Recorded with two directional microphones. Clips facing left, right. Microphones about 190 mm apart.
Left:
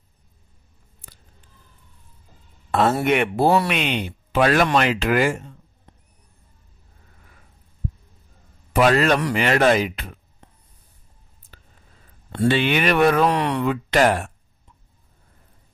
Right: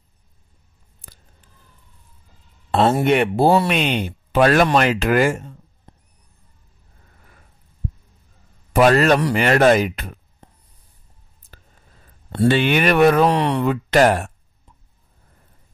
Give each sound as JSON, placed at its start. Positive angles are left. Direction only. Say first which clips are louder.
{"t": 2.7, "sound": "speech", "louder": "right 3 dB", "side_deg": -30}
{"t": 8.7, "sound": "speech", "louder": "right 3 dB", "side_deg": -45}
{"t": 12.3, "sound": "speech", "louder": "right 3 dB", "side_deg": -40}